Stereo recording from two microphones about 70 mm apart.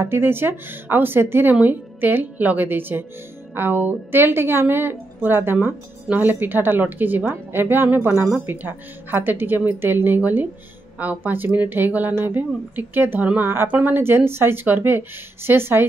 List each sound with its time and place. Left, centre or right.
0.0 s a woman's voice: right